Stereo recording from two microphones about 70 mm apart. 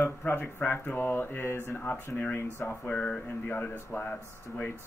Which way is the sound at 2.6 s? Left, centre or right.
Left.